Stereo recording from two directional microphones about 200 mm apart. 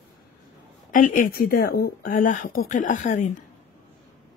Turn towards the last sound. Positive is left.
turn(degrees=40)  # may be behind; listen again after turning